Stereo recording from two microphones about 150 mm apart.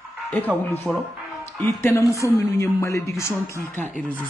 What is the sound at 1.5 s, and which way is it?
Speech, 15° left (ahead or behind).